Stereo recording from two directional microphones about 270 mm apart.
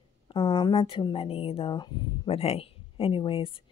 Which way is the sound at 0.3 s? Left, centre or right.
Centre.